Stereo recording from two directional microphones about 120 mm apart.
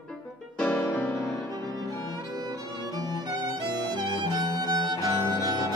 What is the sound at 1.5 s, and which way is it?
Music, 35° right (ahead or behind).